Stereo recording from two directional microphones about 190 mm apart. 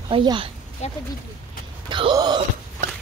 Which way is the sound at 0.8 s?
35° left (ahead or behind).